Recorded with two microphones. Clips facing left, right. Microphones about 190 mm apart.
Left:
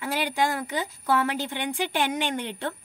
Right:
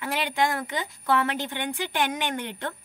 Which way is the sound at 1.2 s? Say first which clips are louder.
Left 1 dB; 15° left (ahead or behind).